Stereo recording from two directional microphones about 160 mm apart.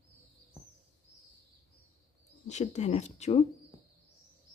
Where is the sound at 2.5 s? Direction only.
45° left (ahead or behind).